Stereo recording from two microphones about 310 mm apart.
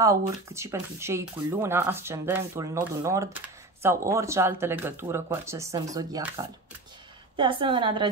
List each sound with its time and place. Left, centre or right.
0.0 s speech: centre